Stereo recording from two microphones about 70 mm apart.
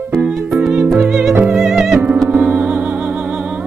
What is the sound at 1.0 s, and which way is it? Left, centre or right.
Music, centre.